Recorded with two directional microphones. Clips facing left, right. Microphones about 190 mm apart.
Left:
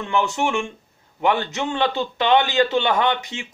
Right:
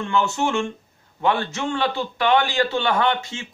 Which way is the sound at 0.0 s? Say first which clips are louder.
Even; 15° left (ahead or behind).